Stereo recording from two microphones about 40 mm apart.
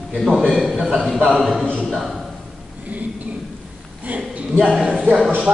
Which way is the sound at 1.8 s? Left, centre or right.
Centre.